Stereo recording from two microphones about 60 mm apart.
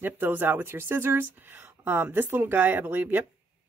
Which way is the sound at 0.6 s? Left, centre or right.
Right.